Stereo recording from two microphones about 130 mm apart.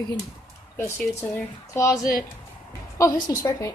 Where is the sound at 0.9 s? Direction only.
10° left (ahead or behind).